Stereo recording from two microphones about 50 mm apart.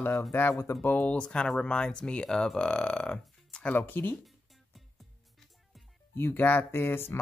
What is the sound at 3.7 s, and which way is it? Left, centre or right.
Speech, left.